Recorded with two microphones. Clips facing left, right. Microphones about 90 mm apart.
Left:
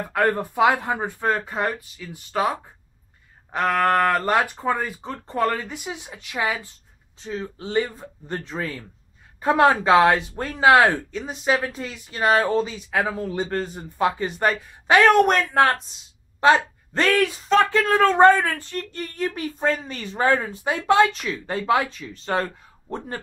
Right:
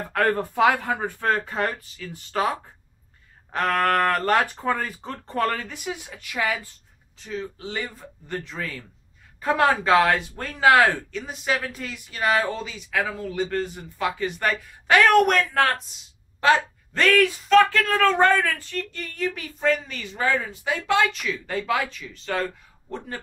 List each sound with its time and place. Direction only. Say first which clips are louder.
0.1 s speech: left 1 dB; 10° left (ahead or behind)
16.3 s speech: left 2 dB; 30° left (ahead or behind)
21.8 s speech: left 1 dB; 35° left (ahead or behind)